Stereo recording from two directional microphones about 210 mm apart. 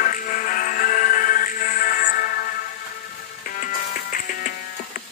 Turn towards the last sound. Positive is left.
turn(degrees=40)  # may be behind; listen again after turning